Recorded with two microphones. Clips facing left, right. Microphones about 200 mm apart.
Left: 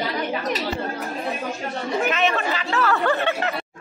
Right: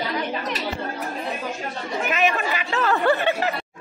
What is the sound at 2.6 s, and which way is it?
Speech, 20° right (ahead or behind).